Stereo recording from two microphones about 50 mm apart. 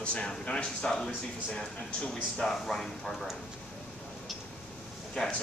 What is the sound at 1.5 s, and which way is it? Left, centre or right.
Speech, left.